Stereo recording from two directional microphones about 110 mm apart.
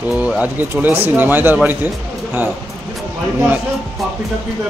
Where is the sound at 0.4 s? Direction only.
15° right (ahead or behind).